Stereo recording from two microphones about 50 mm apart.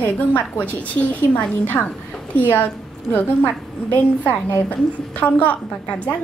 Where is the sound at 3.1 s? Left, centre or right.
Left.